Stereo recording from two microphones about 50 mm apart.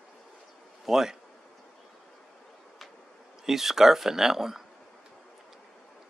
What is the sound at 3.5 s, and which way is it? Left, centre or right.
Speech, centre.